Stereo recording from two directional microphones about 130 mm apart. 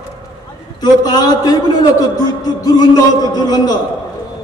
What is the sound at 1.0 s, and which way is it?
A man's voice, 30° left (ahead or behind).